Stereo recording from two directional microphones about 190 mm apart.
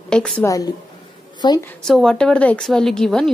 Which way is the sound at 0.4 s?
15° left (ahead or behind).